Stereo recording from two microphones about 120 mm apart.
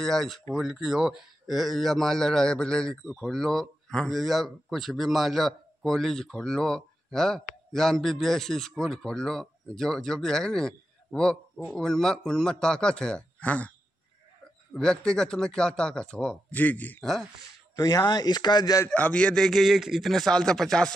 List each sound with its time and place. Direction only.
0.0 s speech: 5° left (ahead or behind)
17.0 s speech: centre (ahead or behind)
17.7 s speech: 35° left (ahead or behind)
18.9 s speech: 10° left (ahead or behind)